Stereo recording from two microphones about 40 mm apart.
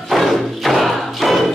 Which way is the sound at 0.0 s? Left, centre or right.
Centre.